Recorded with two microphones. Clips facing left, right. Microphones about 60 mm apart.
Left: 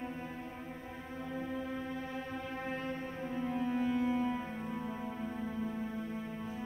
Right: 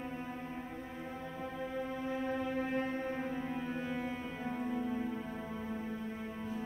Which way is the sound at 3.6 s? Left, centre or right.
Centre.